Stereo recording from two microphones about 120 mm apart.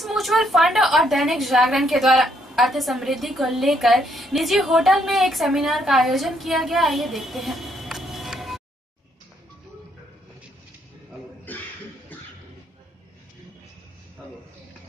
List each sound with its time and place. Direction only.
0.0 s a woman's voice: centre (ahead or behind)